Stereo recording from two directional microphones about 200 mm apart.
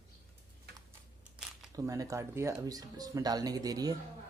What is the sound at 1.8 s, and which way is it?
Speech, 15° right (ahead or behind).